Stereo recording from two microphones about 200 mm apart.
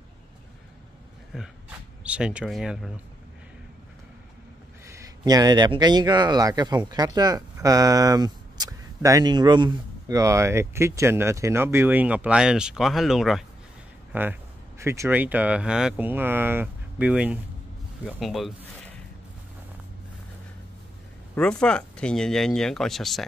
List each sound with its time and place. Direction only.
1.3 s speech: centre (ahead or behind)
4.8 s speech: 15° right (ahead or behind)
21.4 s speech: 5° left (ahead or behind)